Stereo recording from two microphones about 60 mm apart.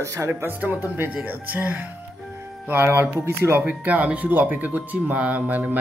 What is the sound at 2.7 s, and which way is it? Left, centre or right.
Speech, right.